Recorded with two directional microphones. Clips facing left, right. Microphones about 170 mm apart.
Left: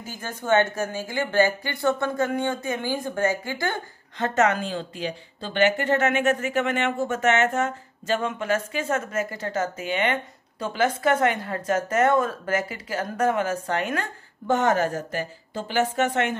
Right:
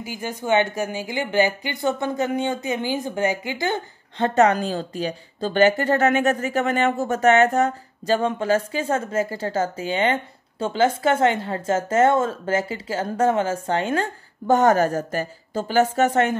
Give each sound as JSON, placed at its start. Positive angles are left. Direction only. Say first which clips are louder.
{"t": 0.0, "sound": "a woman's voice", "louder": "right 4 dB", "side_deg": -10}
{"t": 4.4, "sound": "a woman's voice", "louder": "right 4 dB", "side_deg": -40}
{"t": 14.5, "sound": "speech", "louder": "right 5 dB", "side_deg": -40}